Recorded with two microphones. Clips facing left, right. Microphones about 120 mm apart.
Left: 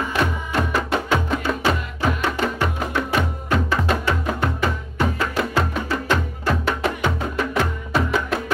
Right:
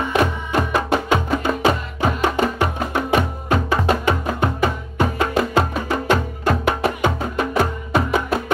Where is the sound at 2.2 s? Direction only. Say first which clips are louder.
Right 3 dB; 20° right (ahead or behind).